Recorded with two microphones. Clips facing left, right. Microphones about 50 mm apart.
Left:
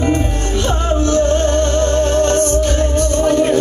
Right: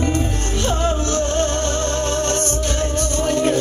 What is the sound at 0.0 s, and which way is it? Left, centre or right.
Music, left.